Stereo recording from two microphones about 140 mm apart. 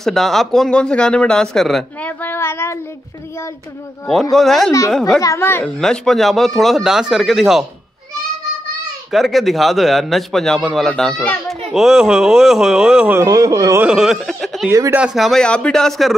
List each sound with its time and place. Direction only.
0.0 s a man's voice: centre (ahead or behind); by 2.8 s 15° left (ahead or behind)
4.1 s a man's voice: centre (ahead or behind)
5.2 s speech: 20° left (ahead or behind)
5.8 s a man's voice: 5° left (ahead or behind)
9.1 s a man's voice: centre (ahead or behind)
13.2 s speech: 25° right (ahead or behind)
13.8 s speech: 5° right (ahead or behind)
14.7 s speech: 20° right (ahead or behind)
15.0 s a man's voice: 5° right (ahead or behind)